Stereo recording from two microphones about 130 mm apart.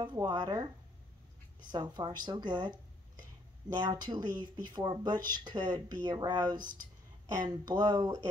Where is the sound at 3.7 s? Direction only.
35° right (ahead or behind).